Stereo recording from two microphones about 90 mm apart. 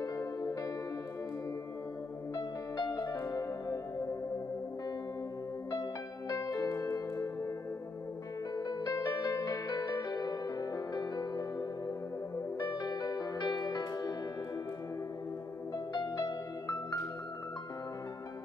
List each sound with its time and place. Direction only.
0.0 s music: 40° left (ahead or behind)
2.3 s music: 45° left (ahead or behind)
5.7 s music: 40° left (ahead or behind)
8.5 s music: 45° left (ahead or behind)
12.6 s music: 50° left (ahead or behind)
15.9 s music: 45° left (ahead or behind)